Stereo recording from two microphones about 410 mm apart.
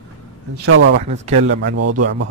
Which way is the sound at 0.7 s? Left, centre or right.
Right.